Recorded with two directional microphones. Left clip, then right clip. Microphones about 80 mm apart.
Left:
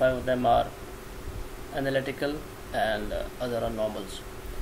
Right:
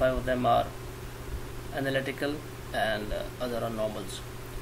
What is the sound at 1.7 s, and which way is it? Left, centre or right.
Speech, centre.